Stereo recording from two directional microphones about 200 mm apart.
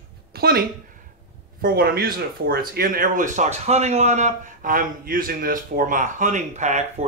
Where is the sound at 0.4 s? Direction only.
50° right (ahead or behind).